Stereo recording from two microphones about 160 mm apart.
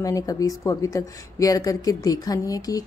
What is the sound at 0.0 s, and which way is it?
A woman's voice, 20° left (ahead or behind).